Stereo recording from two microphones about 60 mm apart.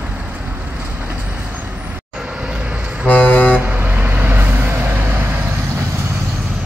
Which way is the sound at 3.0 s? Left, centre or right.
Left.